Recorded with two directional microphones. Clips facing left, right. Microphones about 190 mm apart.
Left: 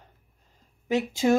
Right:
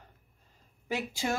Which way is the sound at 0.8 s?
20° left (ahead or behind).